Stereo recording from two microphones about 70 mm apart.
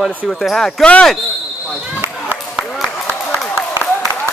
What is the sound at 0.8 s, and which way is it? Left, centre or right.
Speech, centre.